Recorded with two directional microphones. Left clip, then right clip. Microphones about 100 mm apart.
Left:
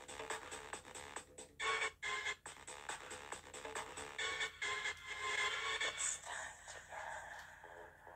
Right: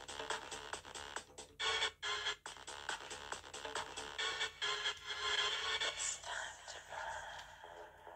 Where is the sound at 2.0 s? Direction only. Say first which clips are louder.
Right 2 dB; 15° left (ahead or behind).